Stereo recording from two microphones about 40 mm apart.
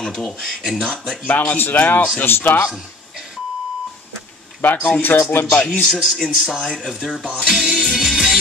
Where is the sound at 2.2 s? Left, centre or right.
Left.